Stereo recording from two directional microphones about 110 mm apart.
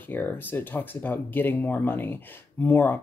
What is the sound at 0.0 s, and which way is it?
Speech, 15° left (ahead or behind).